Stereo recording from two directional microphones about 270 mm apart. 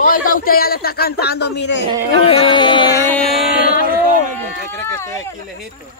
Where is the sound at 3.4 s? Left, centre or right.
Left.